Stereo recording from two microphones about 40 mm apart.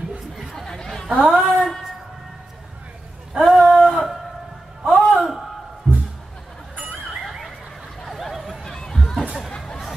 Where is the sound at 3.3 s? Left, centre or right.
Centre.